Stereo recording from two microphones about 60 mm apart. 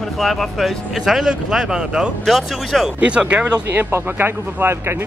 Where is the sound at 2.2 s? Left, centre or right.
Centre.